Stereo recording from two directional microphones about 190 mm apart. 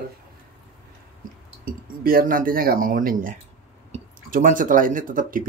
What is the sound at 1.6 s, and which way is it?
Speech, 50° right (ahead or behind).